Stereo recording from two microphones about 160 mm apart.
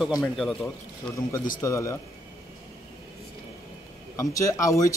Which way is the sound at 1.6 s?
20° left (ahead or behind).